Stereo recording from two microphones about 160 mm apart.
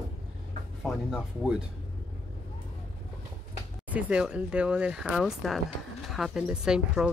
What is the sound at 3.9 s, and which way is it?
Speech, 5° right (ahead or behind).